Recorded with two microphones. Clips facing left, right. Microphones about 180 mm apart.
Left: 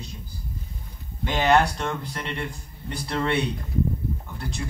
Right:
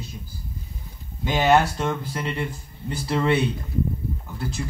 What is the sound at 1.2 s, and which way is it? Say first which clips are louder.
Speech: right 1 dB; 5° right (ahead or behind).